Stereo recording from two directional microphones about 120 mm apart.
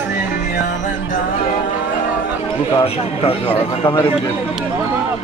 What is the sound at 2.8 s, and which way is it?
Speech, 50° left (ahead or behind).